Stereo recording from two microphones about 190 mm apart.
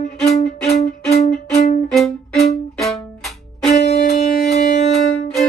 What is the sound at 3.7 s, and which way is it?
Music, 35° left (ahead or behind).